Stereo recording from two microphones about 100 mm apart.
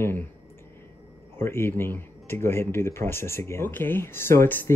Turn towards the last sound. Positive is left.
turn(degrees=25)  # may be behind; listen again after turning